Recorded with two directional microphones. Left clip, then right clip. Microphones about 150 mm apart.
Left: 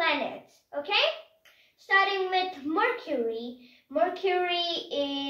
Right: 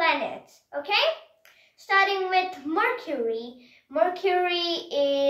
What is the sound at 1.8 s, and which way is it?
A child's voice, 15° left (ahead or behind).